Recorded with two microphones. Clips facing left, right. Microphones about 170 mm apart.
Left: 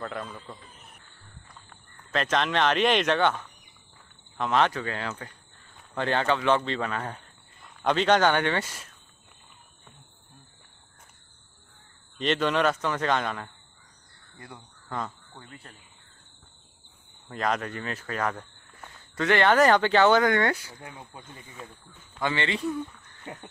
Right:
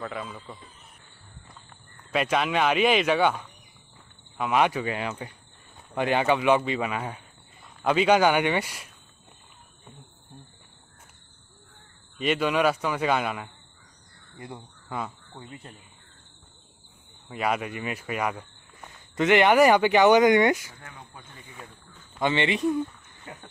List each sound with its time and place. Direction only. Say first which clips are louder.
0.0 s a man's voice: right 1 dB; 5° right (ahead or behind)
2.0 s speech: right 1 dB; 10° right (ahead or behind)
12.2 s speech: right 1 dB; 10° right (ahead or behind)
14.3 s speech: right 5 dB; 20° right (ahead or behind)
14.9 s speech: even; 10° right (ahead or behind)
15.3 s speech: right 4 dB; 20° right (ahead or behind)
17.3 s speech: right 1 dB; 10° right (ahead or behind)
22.2 s speech: right 4 dB; 20° right (ahead or behind)
23.3 s a sound: left 3 dB; 20° left (ahead or behind)